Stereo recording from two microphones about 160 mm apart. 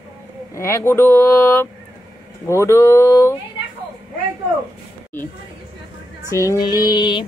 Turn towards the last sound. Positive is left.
turn(degrees=30)  # may be behind; listen again after turning